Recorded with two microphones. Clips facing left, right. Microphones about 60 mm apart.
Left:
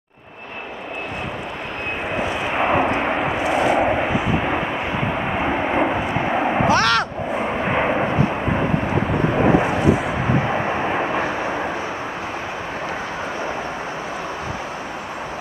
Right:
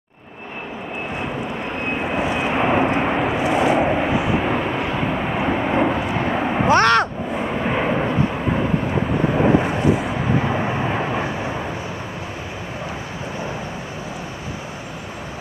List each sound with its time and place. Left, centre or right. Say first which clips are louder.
2.1 s vehicle: right 1 dB; centre
2.5 s vehicle: even; centre
4.5 s vehicle: right 1 dB; centre
6.7 s a sound: right 5 dB; right
7.3 s vehicle: left 1 dB; centre
10.4 s vehicle: left 1 dB; centre